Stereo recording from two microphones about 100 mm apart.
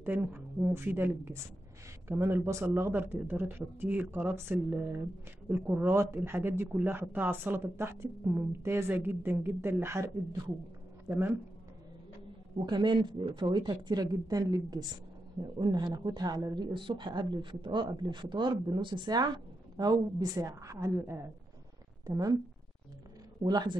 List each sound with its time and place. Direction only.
0.0 s speech: 15° right (ahead or behind); by 10.5 s 30° right (ahead or behind)
11.1 s speech: 20° right (ahead or behind)
12.5 s speech: 50° right (ahead or behind); by 21.0 s 30° right (ahead or behind)
22.0 s a woman's voice: 35° right (ahead or behind)
23.4 s speech: 45° right (ahead or behind)